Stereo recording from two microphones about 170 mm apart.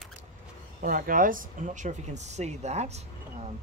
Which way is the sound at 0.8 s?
55° right (ahead or behind).